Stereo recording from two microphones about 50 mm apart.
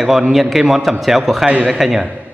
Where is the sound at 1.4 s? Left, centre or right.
Right.